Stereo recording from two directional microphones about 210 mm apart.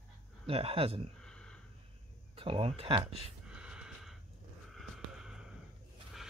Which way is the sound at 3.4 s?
5° right (ahead or behind).